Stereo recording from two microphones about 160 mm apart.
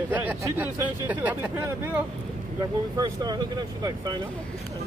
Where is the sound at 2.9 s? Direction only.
25° right (ahead or behind).